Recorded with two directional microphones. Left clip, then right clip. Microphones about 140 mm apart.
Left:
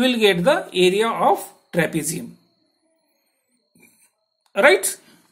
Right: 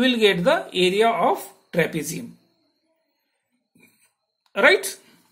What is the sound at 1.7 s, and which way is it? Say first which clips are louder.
Speech: left 1 dB; 15° left (ahead or behind).